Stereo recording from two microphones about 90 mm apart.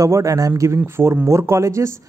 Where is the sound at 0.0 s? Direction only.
35° right (ahead or behind).